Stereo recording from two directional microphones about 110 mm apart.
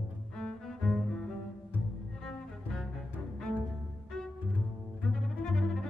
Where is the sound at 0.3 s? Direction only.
5° left (ahead or behind).